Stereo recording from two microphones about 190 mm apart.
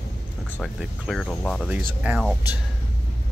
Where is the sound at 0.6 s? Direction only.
Centre (ahead or behind).